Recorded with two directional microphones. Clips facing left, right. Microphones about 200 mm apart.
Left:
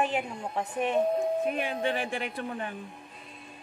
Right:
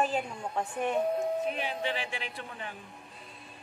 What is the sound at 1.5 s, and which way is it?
A man's voice, 50° left (ahead or behind).